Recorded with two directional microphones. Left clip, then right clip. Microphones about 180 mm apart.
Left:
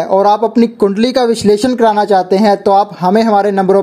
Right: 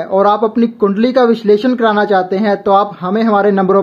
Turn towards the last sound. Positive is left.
turn(degrees=35)  # may be behind; listen again after turning